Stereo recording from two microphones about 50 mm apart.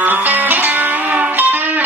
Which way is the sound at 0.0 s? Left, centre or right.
Right.